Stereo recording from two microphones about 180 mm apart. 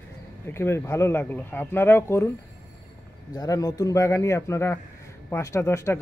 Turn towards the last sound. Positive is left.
turn(degrees=15)  # may be behind; listen again after turning